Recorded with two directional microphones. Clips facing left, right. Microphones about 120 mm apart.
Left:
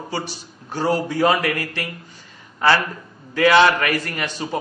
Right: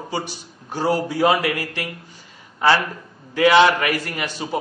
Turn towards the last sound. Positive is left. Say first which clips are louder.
# even
turn(degrees=-10)  # may be behind; listen again after turning